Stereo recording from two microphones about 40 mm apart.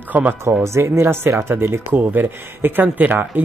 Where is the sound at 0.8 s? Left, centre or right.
Right.